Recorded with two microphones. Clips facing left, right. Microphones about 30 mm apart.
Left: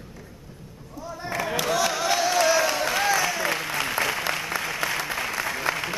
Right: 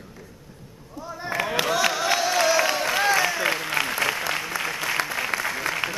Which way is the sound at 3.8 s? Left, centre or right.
Centre.